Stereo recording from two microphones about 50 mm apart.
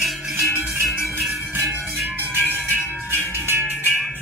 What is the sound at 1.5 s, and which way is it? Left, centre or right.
Music, right.